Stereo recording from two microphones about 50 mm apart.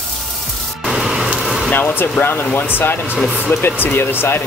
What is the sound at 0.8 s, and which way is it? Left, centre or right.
Music, centre.